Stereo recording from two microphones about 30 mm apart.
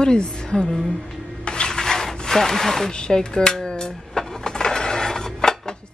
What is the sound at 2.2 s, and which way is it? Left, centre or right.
Speech, centre.